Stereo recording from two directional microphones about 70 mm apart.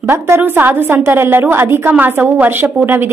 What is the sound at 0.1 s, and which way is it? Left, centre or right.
A woman's voice, right.